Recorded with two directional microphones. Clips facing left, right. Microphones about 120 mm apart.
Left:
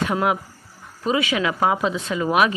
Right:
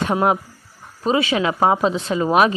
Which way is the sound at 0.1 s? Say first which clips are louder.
Right 3 dB; 30° right (ahead or behind).